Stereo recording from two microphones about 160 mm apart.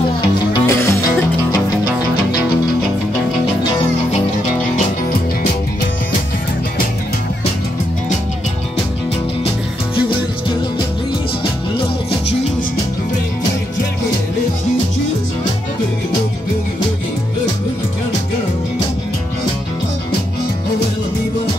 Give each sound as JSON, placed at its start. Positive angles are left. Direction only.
{"t": 0.5, "sound": "music", "side_deg": 20}